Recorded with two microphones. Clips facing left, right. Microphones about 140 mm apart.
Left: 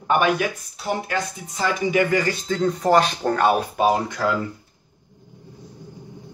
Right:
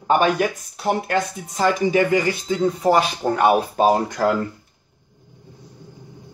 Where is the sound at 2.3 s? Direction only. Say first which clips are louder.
Right 2 dB; 10° right (ahead or behind).